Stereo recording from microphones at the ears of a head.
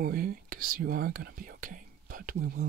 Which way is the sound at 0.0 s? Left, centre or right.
Right.